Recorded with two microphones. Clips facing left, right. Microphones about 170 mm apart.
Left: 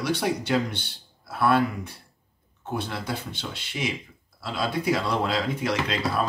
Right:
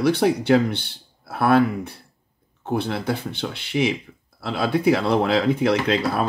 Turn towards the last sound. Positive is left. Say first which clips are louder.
# right 5 dB
turn(degrees=-60)  # may be behind; listen again after turning